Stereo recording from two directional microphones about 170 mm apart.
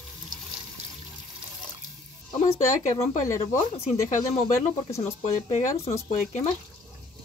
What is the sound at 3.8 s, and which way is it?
Speech, 40° left (ahead or behind).